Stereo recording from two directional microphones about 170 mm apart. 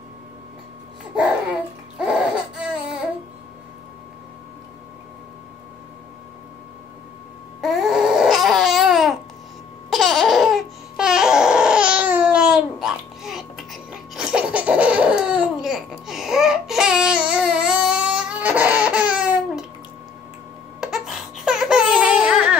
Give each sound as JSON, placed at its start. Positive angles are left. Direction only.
{"t": 2.6, "sound": "a sound", "side_deg": -5}
{"t": 7.6, "sound": "babbling", "side_deg": 0}
{"t": 20.8, "sound": "baby cry", "side_deg": -5}